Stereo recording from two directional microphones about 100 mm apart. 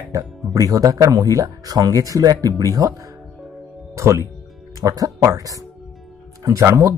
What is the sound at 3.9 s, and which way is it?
A man's voice, 30° right (ahead or behind).